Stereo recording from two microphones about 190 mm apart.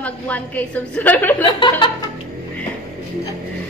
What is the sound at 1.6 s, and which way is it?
Chuckle, 25° left (ahead or behind).